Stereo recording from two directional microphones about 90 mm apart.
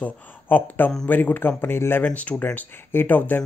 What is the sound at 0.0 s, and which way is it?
Speech, 20° left (ahead or behind).